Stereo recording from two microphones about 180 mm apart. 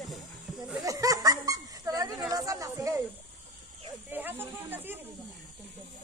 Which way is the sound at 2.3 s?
20° right (ahead or behind).